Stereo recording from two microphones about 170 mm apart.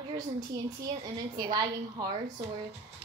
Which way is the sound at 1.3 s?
25° right (ahead or behind).